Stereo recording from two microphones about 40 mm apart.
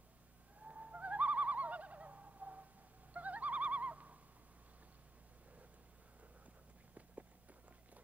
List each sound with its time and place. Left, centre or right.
0.7 s bird: right
3.1 s owl: right